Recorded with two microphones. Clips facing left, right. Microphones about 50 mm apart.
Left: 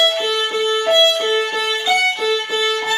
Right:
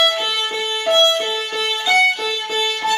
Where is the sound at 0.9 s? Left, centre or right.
Centre.